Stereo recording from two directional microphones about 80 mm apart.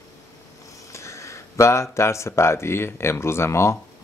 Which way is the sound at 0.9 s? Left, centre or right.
Left.